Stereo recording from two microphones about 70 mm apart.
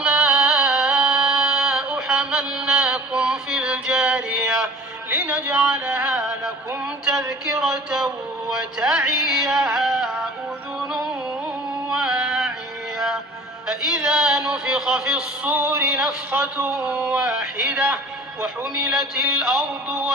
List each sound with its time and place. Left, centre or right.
0.0 s music: centre
6.8 s a sound: centre
11.9 s a sound: centre
13.7 s a man's voice: centre
15.4 s a man's voice: right
18.8 s a man's voice: centre